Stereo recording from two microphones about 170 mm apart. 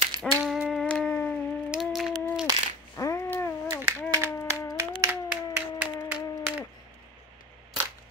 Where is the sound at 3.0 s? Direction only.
15° left (ahead or behind).